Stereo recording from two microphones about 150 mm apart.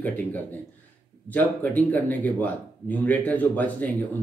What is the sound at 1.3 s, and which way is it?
A man's voice, 10° left (ahead or behind).